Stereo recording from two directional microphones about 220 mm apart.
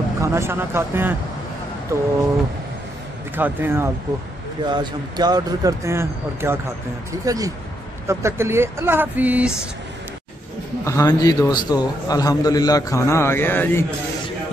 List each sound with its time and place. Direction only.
0.2 s speech: 10° right (ahead or behind)
3.3 s speech: 10° right (ahead or behind)
10.8 s a man's voice: 15° left (ahead or behind)